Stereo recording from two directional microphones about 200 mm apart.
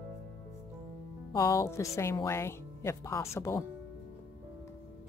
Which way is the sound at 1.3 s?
15° left (ahead or behind).